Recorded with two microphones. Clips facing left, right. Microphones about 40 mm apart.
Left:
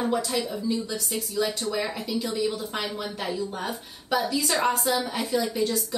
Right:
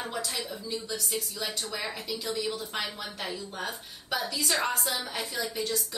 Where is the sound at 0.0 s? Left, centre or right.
Centre.